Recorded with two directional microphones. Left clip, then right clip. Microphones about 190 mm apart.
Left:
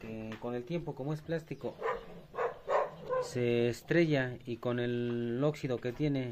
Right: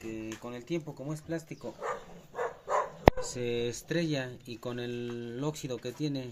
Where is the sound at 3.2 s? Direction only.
50° left (ahead or behind).